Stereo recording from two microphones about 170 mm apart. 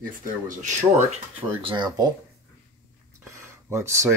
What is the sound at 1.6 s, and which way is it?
Speech, 25° right (ahead or behind).